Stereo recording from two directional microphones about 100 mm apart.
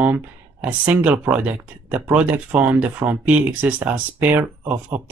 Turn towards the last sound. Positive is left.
turn(degrees=-15)  # may be behind; listen again after turning